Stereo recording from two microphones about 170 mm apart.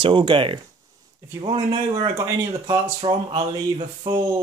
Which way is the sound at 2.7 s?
25° right (ahead or behind).